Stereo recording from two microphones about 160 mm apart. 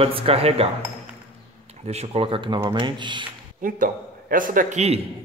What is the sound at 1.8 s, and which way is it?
Speech, 40° right (ahead or behind).